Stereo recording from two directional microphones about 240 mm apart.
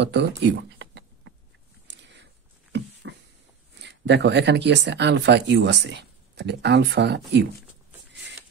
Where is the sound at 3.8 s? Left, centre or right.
Right.